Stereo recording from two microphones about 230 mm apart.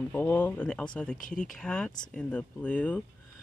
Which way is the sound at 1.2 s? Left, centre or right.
Left.